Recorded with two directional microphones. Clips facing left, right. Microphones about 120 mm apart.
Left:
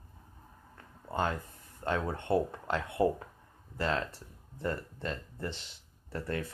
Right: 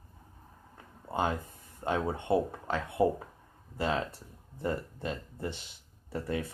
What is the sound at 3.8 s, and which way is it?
Speech, 15° right (ahead or behind).